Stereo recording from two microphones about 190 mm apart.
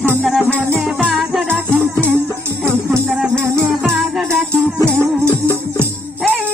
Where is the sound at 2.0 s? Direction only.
10° left (ahead or behind).